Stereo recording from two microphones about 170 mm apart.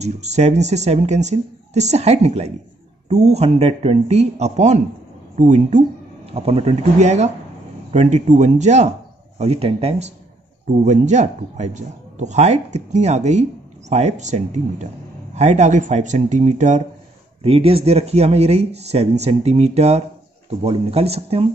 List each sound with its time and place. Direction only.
0.0 s a man's voice: 40° right (ahead or behind)